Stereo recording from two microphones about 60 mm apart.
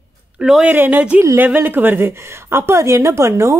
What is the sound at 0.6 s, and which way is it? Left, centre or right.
A woman's voice, right.